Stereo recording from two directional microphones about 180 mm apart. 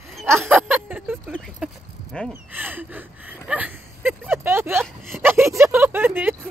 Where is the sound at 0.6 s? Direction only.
10° right (ahead or behind).